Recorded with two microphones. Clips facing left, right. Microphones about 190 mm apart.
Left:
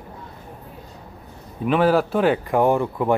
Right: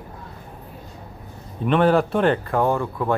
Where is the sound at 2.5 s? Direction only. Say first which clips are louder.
Left 3 dB; 15° left (ahead or behind).